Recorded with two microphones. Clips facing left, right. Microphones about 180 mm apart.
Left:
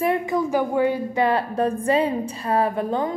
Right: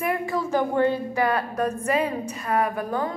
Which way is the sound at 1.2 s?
25° left (ahead or behind).